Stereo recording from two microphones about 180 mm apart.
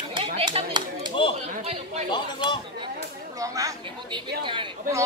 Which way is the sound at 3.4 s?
20° right (ahead or behind).